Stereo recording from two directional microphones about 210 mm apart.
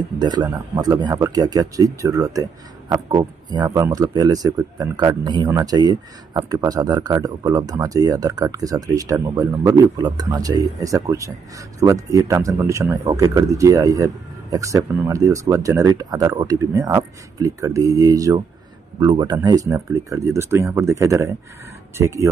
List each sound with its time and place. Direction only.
0.2 s speech: 20° right (ahead or behind)